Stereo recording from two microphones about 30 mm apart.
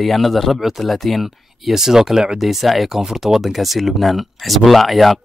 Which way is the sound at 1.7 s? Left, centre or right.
Centre.